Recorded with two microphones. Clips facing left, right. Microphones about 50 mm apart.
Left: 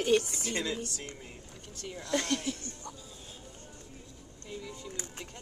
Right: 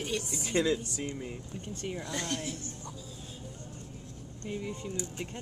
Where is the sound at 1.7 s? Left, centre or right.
Right.